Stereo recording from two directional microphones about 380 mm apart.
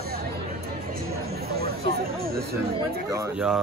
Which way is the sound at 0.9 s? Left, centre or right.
Right.